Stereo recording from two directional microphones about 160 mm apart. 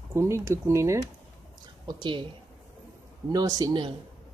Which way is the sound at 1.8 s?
30° right (ahead or behind).